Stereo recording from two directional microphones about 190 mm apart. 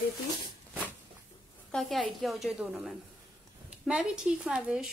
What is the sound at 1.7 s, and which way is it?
A woman's voice, centre (ahead or behind).